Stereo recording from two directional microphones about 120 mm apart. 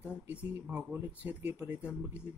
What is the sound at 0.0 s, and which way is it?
Speech, 10° right (ahead or behind).